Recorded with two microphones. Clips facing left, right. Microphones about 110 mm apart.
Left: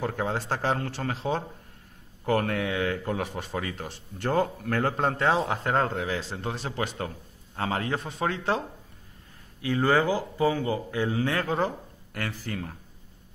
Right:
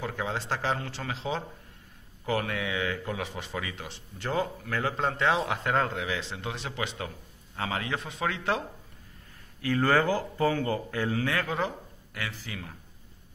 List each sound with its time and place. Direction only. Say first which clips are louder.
0.0 s speech: left 4 dB; 45° left (ahead or behind)
9.6 s speech: left 1 dB; 20° left (ahead or behind); by 12.7 s 45° left (ahead or behind)